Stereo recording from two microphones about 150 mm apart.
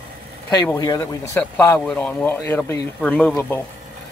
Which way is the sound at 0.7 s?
25° left (ahead or behind).